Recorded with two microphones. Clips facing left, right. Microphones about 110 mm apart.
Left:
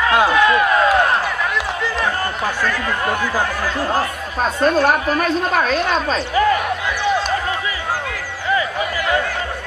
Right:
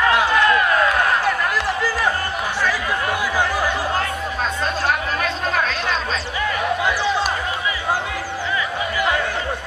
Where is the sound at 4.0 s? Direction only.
45° left (ahead or behind).